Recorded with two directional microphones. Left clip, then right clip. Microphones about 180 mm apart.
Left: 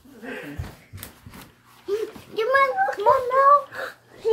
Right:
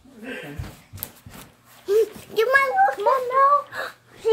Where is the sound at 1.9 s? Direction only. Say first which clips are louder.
Right 7 dB; 60° right (ahead or behind).